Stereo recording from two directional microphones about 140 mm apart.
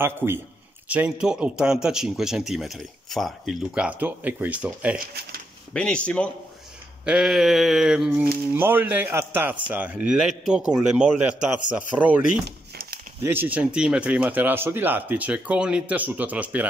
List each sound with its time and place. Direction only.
0.0 s speech: 15° right (ahead or behind)
4.9 s speech: 90° right
5.7 s speech: 5° left (ahead or behind)
7.1 s speech: 5° right (ahead or behind)
13.2 s speech: 15° right (ahead or behind)